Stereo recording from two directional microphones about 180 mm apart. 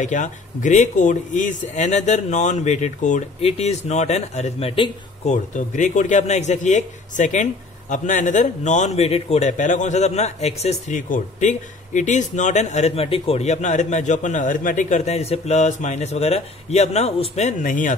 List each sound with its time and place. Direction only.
0.0 s a man's voice: 45° left (ahead or behind)
5.3 s a man's voice: 45° left (ahead or behind)